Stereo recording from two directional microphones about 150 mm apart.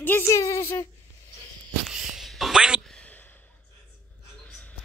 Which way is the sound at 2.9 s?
10° left (ahead or behind).